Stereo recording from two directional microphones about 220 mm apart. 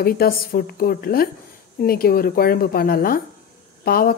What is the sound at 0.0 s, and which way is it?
A woman's voice, 45° left (ahead or behind).